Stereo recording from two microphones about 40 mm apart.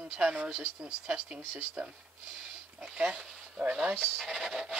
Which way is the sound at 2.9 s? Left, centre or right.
Right.